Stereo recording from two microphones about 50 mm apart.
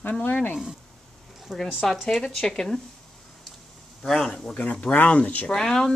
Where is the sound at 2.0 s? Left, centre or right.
Centre.